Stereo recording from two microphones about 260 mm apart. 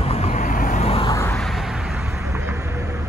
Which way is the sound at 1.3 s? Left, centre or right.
Centre.